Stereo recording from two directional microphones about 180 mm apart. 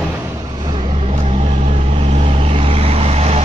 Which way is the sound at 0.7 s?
35° right (ahead or behind).